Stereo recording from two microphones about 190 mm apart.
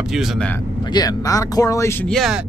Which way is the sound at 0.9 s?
20° left (ahead or behind).